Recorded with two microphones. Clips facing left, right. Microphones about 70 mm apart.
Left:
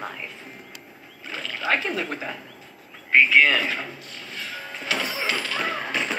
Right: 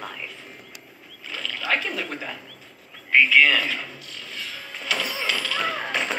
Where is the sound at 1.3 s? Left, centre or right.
Left.